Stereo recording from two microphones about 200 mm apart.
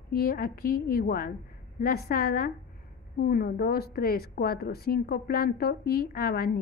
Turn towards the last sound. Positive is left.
turn(degrees=50)  # may be behind; listen again after turning